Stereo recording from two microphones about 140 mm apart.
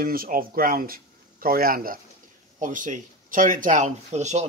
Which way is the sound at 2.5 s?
65° right (ahead or behind).